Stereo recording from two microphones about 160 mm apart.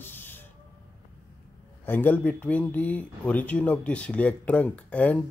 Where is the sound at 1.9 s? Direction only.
10° left (ahead or behind).